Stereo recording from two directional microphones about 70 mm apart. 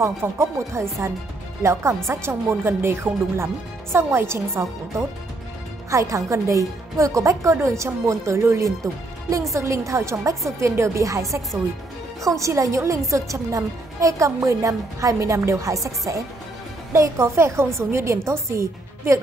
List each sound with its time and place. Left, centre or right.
0.0 s a woman's voice: right
16.9 s a woman's voice: right